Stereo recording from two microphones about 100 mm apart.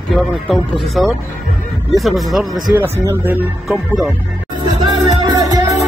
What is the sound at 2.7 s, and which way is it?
Speech, 20° right (ahead or behind).